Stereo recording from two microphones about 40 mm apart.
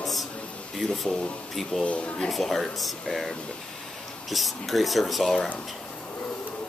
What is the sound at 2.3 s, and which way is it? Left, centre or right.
Speech, centre.